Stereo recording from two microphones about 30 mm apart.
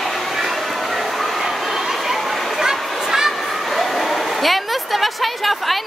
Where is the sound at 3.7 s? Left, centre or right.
Centre.